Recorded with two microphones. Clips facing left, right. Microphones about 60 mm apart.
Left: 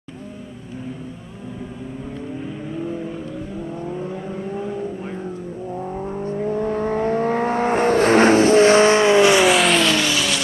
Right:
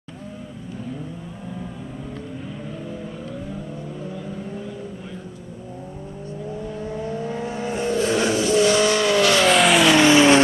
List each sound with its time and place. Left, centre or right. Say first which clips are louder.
6.3 s vehicle: left 9 dB; left
9.5 s vehicle: even; centre
9.8 s vehicle: right 5 dB; centre